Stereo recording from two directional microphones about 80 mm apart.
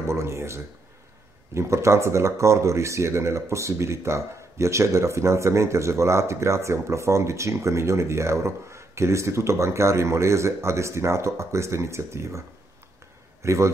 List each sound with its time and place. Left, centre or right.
0.0 s a man's voice: right